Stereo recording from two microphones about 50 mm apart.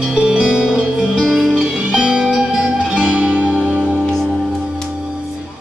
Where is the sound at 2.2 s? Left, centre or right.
Centre.